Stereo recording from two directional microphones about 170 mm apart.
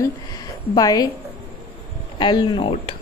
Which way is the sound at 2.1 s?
25° left (ahead or behind).